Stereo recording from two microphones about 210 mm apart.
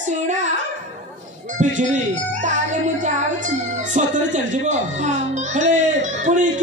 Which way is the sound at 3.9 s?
35° right (ahead or behind).